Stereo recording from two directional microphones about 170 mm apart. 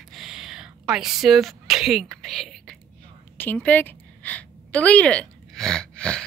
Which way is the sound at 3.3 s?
10° left (ahead or behind).